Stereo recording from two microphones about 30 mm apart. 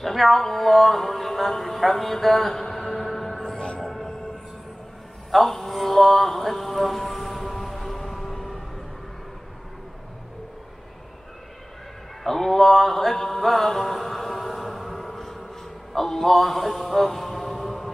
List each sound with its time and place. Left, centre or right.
0.0 s speech: centre
3.5 s music: left
3.8 s train: centre
5.3 s a sound: centre
12.2 s music: centre
13.4 s mantra: centre
15.9 s a man's voice: centre
16.3 s music: centre